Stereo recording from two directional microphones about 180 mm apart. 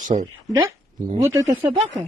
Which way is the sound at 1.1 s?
15° right (ahead or behind).